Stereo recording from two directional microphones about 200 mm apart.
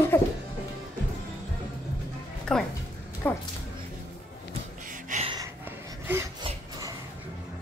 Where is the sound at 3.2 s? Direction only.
10° left (ahead or behind).